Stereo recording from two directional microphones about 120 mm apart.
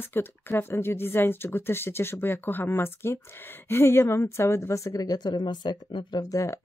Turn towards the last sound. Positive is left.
turn(degrees=25)  # may be behind; listen again after turning